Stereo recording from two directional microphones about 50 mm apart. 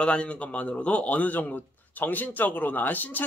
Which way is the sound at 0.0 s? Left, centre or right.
Left.